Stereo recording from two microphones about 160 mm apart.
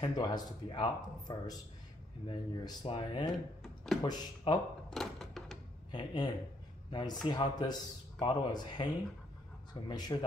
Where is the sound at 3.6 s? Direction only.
Centre (ahead or behind).